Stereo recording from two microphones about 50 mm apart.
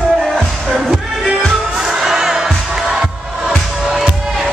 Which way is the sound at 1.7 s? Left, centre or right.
Centre.